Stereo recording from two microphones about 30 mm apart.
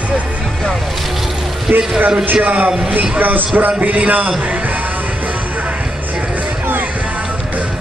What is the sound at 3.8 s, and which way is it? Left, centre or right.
Speech, right.